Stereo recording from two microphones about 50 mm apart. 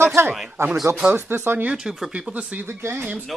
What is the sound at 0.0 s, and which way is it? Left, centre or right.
Speech, right.